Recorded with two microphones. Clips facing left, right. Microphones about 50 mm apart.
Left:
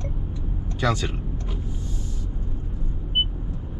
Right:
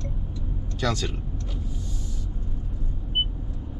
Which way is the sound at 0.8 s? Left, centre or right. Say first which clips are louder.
Left 3 dB; centre.